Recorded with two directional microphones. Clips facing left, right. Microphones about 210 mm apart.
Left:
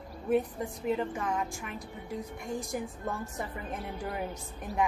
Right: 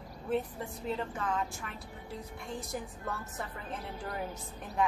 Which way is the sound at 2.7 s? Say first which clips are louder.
Left 4 dB; 15° left (ahead or behind).